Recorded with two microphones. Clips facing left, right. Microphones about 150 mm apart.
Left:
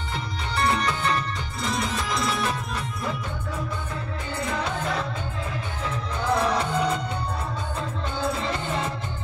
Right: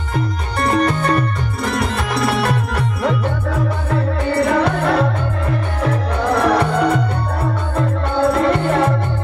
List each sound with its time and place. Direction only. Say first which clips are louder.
0.1 s music: right 9 dB; 50° right (ahead or behind); by 8.9 s 65° right (ahead or behind)